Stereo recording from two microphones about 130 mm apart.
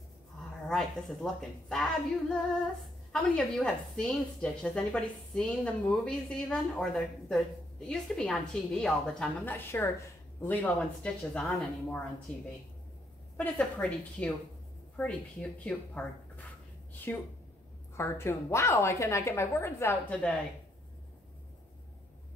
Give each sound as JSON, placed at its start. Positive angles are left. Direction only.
{"t": 0.7, "sound": "a woman's voice", "side_deg": 5}